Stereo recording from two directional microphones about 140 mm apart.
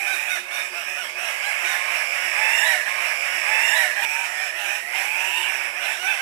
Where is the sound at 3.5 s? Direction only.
30° left (ahead or behind).